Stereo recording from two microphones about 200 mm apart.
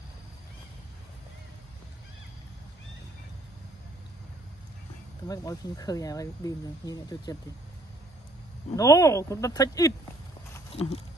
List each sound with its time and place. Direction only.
5.3 s speech: 15° left (ahead or behind)
8.7 s speech: 15° left (ahead or behind)
10.7 s a sound: 30° left (ahead or behind)